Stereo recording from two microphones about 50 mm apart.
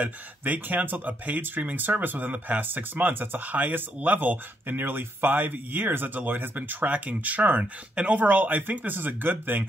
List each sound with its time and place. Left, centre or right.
0.0 s speech: right